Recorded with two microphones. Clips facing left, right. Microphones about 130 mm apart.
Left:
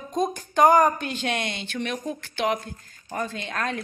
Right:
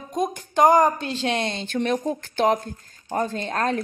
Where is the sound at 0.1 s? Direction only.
15° right (ahead or behind).